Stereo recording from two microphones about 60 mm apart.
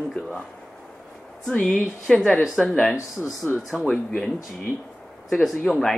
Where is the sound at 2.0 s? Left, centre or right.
Centre.